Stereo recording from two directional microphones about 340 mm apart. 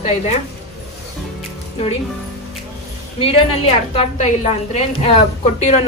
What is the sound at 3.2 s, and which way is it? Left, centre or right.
A woman's voice, centre.